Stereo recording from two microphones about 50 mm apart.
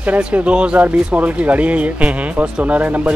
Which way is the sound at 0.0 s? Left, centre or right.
Right.